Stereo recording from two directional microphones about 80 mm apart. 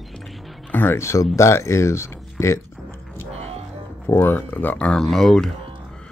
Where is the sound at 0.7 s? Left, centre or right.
Left.